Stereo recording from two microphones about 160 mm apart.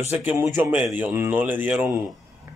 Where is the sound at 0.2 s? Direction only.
10° right (ahead or behind).